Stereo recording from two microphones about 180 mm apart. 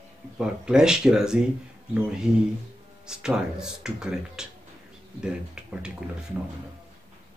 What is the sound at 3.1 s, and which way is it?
Speech, 5° right (ahead or behind).